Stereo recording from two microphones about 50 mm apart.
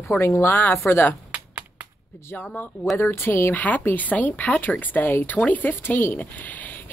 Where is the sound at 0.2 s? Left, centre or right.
Left.